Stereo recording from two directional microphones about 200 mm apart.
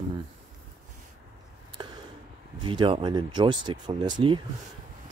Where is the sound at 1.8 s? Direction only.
20° right (ahead or behind).